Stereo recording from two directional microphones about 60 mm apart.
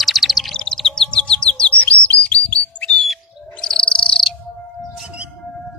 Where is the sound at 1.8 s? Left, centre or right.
Left.